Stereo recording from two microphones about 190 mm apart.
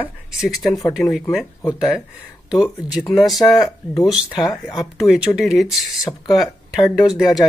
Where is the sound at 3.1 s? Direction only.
Centre (ahead or behind).